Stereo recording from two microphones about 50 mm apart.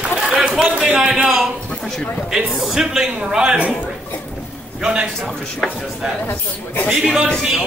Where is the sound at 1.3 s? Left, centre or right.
Centre.